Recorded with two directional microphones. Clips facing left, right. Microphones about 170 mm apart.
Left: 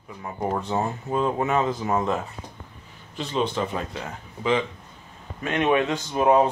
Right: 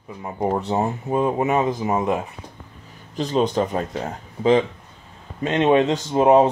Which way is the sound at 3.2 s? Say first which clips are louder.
Right 5 dB; 40° right (ahead or behind).